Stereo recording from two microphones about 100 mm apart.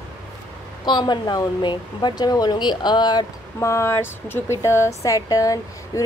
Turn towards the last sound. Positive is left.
turn(degrees=35)  # may be behind; listen again after turning